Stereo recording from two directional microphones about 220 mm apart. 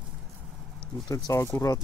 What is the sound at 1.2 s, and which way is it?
Speech, 10° left (ahead or behind).